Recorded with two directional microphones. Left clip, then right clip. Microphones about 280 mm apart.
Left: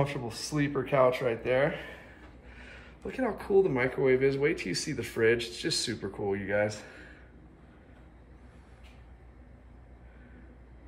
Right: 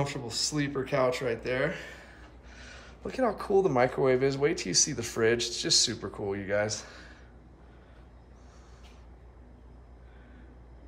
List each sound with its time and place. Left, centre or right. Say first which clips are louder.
0.0 s speech: right 1 dB; centre
2.5 s a sound: right 1 dB; right
3.1 s speech: right 2 dB; centre